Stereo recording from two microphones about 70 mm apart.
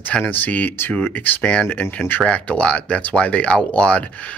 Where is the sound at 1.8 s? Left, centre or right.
Left.